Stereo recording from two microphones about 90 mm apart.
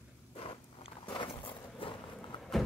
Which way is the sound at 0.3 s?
90° left.